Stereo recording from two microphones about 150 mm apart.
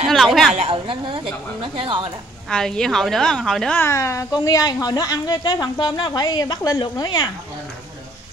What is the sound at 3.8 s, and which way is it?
Speech, 20° left (ahead or behind).